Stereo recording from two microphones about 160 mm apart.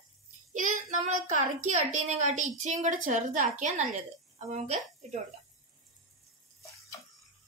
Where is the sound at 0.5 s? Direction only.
55° right (ahead or behind).